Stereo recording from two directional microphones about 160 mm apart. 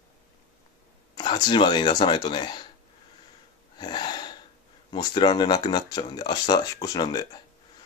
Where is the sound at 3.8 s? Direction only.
25° left (ahead or behind).